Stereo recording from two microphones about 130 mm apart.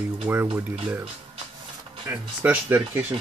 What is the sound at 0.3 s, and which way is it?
Speech, 15° right (ahead or behind).